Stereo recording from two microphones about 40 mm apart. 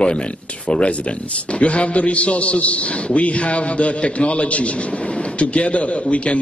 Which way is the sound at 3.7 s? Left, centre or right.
Left.